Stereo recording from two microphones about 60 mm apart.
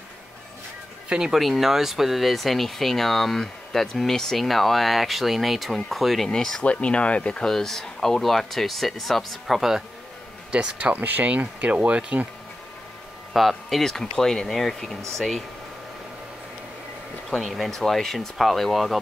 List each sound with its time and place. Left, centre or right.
1.0 s a sound: centre
1.3 s speech: centre
6.6 s speech: centre
10.5 s speech: right
13.3 s speech: centre
17.4 s speech: centre